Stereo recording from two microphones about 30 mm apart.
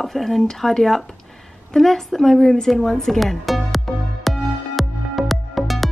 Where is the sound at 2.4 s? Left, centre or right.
Centre.